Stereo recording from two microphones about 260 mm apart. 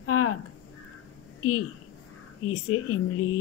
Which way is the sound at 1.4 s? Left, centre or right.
Left.